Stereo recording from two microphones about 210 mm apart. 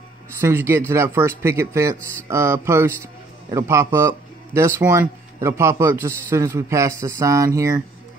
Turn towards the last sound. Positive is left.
turn(degrees=-15)  # may be behind; listen again after turning